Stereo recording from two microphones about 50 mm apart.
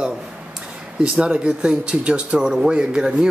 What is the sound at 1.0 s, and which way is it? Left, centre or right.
Speech, centre.